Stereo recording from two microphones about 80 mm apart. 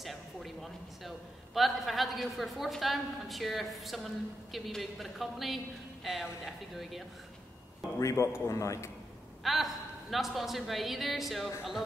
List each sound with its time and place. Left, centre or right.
0.0 s a man's voice: centre
8.0 s a man's voice: left
9.4 s a woman's voice: centre